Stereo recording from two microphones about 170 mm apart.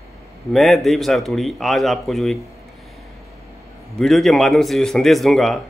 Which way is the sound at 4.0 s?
Centre (ahead or behind).